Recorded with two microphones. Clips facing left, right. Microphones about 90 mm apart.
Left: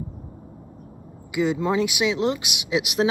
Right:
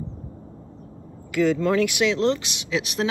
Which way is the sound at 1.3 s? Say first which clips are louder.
Right 2 dB; 15° left (ahead or behind).